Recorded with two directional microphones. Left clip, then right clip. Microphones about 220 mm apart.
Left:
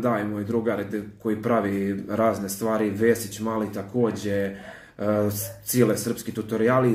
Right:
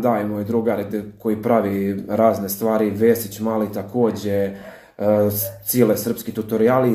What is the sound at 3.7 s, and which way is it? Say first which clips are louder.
Speech: right 5 dB; 10° left (ahead or behind).